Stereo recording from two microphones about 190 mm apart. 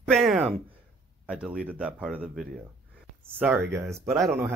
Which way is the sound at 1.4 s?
5° right (ahead or behind).